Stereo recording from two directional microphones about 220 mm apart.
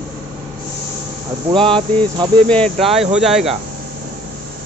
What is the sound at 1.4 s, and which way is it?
Speech, 25° right (ahead or behind).